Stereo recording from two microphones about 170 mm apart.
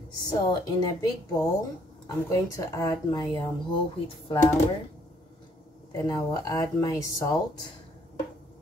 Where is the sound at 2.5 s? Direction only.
20° left (ahead or behind).